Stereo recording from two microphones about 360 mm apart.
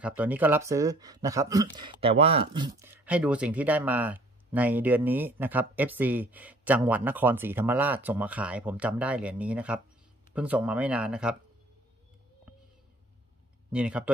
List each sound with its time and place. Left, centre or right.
0.0 s speech: centre
13.7 s speech: centre